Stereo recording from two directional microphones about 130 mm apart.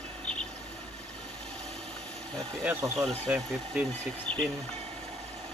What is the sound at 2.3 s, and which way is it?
Speech, 5° left (ahead or behind).